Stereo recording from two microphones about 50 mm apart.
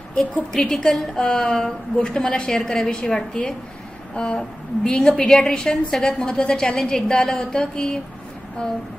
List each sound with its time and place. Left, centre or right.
0.1 s a woman's voice: left
0.5 s a woman's voice: centre